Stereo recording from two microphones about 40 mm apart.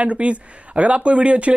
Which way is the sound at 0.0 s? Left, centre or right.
Right.